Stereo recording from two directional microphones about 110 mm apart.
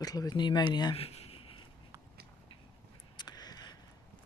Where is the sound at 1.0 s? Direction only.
65° left (ahead or behind).